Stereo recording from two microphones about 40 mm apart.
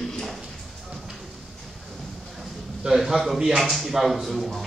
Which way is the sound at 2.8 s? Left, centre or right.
Centre.